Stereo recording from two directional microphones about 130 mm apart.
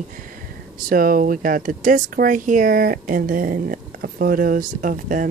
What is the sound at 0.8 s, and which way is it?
Speech, 90° right.